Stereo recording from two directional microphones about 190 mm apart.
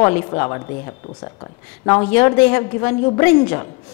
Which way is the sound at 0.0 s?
15° left (ahead or behind).